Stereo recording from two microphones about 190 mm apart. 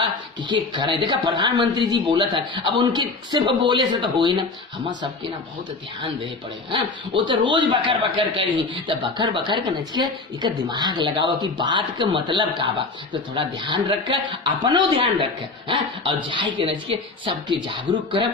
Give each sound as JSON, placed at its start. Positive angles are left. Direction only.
{"t": 0.0, "sound": "speech", "side_deg": -25}
{"t": 6.7, "sound": "speech", "side_deg": -25}